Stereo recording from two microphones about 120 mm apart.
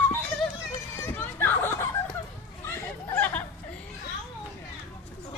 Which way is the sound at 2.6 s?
15° left (ahead or behind).